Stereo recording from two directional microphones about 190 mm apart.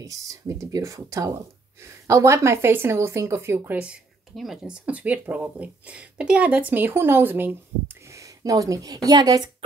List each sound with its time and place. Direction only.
0.0 s speech: 15° right (ahead or behind)